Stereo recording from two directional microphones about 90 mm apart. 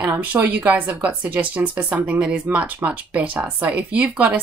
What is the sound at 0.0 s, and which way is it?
Speech, 20° right (ahead or behind).